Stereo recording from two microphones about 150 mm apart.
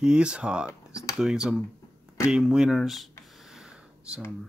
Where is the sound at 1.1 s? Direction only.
5° right (ahead or behind).